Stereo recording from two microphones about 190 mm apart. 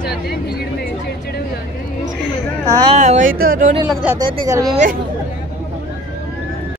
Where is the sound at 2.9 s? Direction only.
35° right (ahead or behind).